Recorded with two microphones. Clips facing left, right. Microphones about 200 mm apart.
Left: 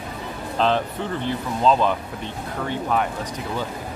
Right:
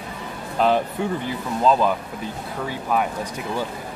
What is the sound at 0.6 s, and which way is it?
Speech, 10° right (ahead or behind).